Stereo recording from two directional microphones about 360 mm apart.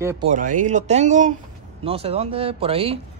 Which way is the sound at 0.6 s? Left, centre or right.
Centre.